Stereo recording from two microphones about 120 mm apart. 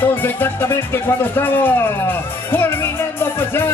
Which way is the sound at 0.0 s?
15° left (ahead or behind).